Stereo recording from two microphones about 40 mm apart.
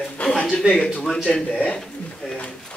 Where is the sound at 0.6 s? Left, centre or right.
Right.